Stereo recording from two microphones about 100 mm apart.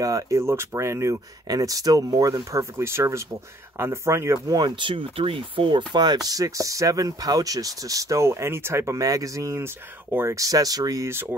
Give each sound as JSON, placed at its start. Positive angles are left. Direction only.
{"t": 0.0, "sound": "speech", "side_deg": -30}